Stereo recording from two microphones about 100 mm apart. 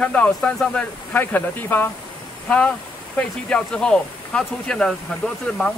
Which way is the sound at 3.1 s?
10° left (ahead or behind).